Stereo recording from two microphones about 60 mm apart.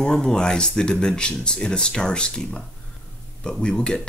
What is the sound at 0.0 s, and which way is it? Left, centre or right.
Speech, centre.